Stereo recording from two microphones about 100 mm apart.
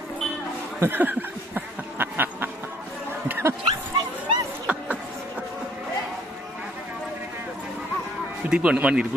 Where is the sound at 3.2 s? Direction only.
25° right (ahead or behind).